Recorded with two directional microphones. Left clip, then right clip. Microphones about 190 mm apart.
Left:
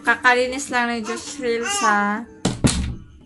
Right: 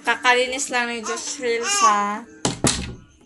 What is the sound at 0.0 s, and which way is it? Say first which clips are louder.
A woman's voice: left 1 dB; 15° left (ahead or behind).